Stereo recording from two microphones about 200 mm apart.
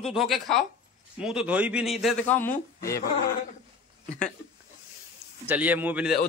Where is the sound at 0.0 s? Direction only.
Centre (ahead or behind).